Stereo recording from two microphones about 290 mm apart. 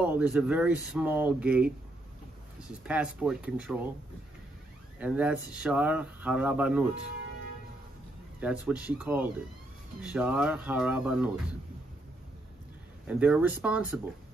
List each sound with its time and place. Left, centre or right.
0.0 s speech: centre
2.9 s speech: centre
4.9 s speech: centre
8.4 s speech: centre
13.0 s speech: centre